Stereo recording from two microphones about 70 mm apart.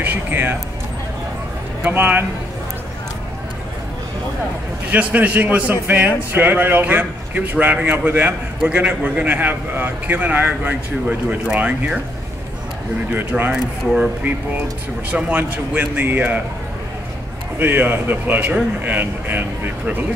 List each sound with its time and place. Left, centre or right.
0.0 s speech: right
1.8 s a man's voice: right
4.9 s a man's voice: right
13.5 s a man's voice: centre
17.6 s a man's voice: right